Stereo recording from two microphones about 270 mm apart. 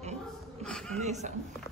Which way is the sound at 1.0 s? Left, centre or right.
Right.